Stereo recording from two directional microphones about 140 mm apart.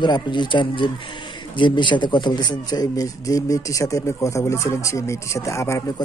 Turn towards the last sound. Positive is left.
turn(degrees=20)  # may be behind; listen again after turning